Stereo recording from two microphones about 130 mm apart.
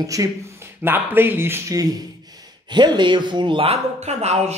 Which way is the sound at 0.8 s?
15° right (ahead or behind).